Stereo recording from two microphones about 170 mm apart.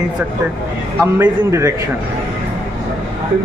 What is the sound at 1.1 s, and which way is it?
Speech, 15° right (ahead or behind).